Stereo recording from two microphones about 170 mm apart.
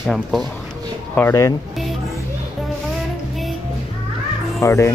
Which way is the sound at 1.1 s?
15° left (ahead or behind).